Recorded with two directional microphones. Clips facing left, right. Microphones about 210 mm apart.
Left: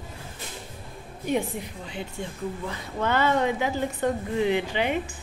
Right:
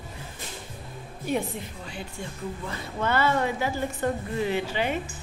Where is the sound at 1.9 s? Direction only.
20° left (ahead or behind).